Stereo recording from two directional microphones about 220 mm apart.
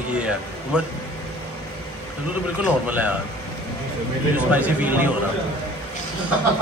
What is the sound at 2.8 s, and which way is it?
Speech, 5° right (ahead or behind).